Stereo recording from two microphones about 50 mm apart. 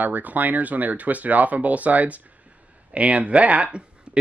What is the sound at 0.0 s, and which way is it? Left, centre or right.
Speech, right.